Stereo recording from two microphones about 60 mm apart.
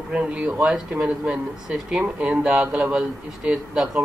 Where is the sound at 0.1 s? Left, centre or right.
Centre.